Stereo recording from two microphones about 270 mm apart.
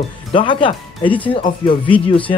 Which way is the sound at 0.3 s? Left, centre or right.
Centre.